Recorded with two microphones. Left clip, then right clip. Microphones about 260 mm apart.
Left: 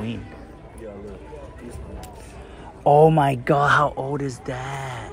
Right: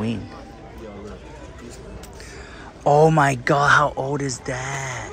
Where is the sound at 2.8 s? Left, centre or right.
Centre.